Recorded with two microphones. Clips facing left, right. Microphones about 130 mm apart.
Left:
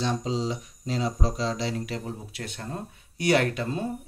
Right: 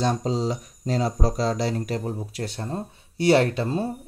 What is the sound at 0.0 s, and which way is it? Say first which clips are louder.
Speech: right 4 dB; 45° right (ahead or behind).